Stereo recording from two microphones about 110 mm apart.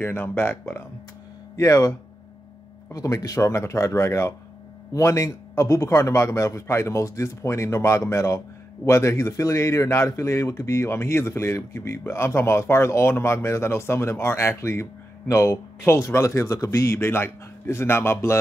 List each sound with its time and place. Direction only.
0.0 s speech: 20° left (ahead or behind)